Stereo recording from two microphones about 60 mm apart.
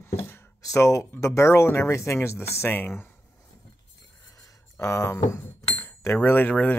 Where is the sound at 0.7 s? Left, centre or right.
Left.